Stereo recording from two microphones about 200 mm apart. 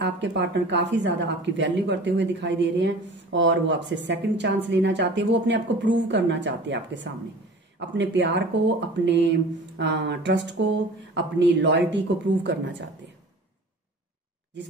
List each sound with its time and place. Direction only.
0.0 s speech: 60° right (ahead or behind)
14.5 s speech: 60° right (ahead or behind)